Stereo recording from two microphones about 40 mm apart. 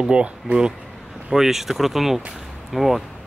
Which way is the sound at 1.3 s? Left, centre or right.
Centre.